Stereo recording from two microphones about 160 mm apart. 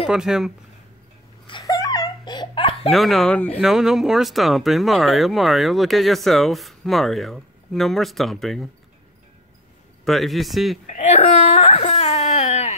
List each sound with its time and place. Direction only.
0.1 s speech: 5° right (ahead or behind)
1.5 s laughter: 20° left (ahead or behind)
2.9 s speech: centre (ahead or behind)
10.0 s speech: centre (ahead or behind)
10.9 s a sound: 50° left (ahead or behind)